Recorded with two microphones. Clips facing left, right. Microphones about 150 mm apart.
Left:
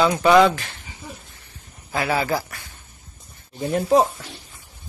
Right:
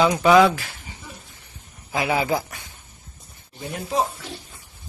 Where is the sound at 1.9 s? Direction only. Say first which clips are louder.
Even; 15° right (ahead or behind).